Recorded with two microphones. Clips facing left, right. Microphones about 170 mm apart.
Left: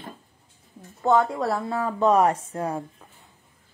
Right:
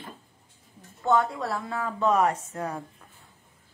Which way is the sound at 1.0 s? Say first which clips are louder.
Left 3 dB; 40° left (ahead or behind).